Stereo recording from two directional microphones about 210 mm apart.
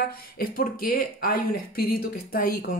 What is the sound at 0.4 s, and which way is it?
Speech, 45° left (ahead or behind).